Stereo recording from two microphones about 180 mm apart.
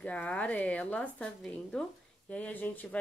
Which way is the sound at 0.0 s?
5° left (ahead or behind).